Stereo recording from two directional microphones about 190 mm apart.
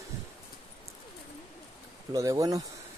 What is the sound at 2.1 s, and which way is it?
Speech, 20° right (ahead or behind).